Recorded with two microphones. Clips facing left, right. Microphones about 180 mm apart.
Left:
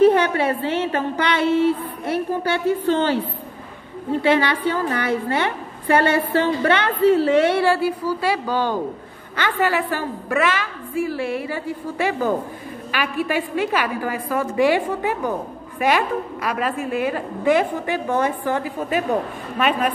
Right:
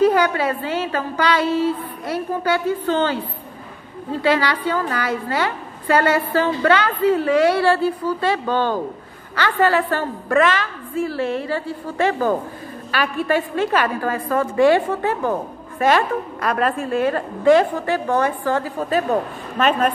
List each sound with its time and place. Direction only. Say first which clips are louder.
0.0 s a woman's voice: left 1 dB; 25° left (ahead or behind)
4.2 s a woman's voice: even; 25° left (ahead or behind)
7.6 s a woman's voice: right 1 dB; 10° left (ahead or behind)